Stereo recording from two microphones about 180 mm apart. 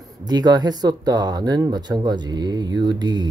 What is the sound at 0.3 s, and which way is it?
Speech, 20° right (ahead or behind).